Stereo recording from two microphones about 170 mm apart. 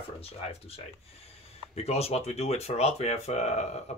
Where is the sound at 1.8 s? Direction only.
35° left (ahead or behind).